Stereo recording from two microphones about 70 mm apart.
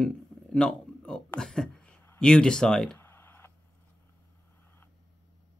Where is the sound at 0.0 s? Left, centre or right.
Centre.